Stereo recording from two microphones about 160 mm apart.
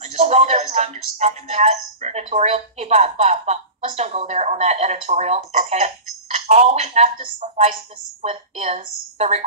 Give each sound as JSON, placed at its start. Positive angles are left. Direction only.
{"t": 0.0, "sound": "speech", "side_deg": -45}